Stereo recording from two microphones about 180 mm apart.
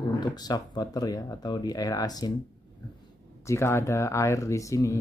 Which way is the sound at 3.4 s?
15° left (ahead or behind).